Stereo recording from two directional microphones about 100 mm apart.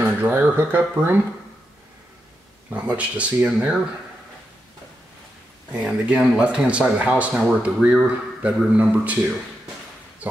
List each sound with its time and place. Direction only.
0.0 s speech: 20° right (ahead or behind)
2.7 s speech: 15° right (ahead or behind)
5.7 s speech: 10° right (ahead or behind)